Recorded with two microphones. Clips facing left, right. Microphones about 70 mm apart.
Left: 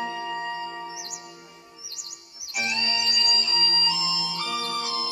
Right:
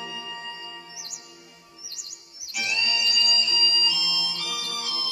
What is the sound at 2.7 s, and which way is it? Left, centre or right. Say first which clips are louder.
Music: right 2 dB; left.